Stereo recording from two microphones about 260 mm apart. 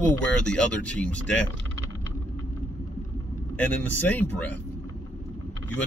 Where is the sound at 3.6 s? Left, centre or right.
Centre.